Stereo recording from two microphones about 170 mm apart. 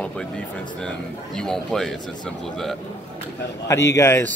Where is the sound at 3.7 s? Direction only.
15° left (ahead or behind).